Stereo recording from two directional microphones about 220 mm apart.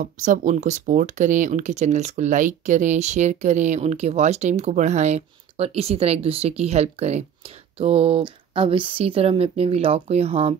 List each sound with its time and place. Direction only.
0.0 s speech: 35° right (ahead or behind)